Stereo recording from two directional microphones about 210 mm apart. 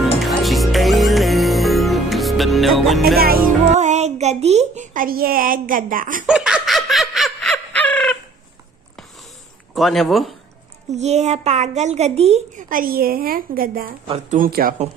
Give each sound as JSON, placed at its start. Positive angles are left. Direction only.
{"t": 0.0, "sound": "music", "side_deg": 0}
{"t": 3.2, "sound": "speech", "side_deg": -45}
{"t": 6.2, "sound": "snicker", "side_deg": -5}
{"t": 9.8, "sound": "speech", "side_deg": 0}
{"t": 10.9, "sound": "speech", "side_deg": -30}
{"t": 14.0, "sound": "speech", "side_deg": -25}
{"t": 14.4, "sound": "speech", "side_deg": -45}